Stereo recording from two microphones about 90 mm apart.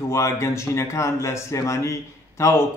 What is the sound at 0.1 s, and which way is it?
Speech, 30° left (ahead or behind).